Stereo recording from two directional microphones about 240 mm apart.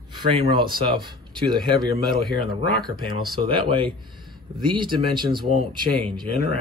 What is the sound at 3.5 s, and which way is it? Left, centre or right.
Speech, right.